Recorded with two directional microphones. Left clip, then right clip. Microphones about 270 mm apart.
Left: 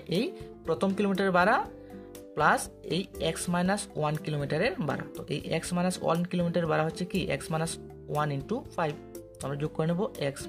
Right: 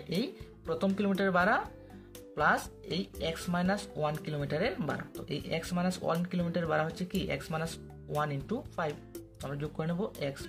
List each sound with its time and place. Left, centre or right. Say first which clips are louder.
0.1 s speech: left 5 dB; left